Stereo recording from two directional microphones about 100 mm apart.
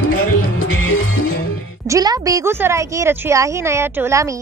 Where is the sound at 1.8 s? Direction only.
35° right (ahead or behind).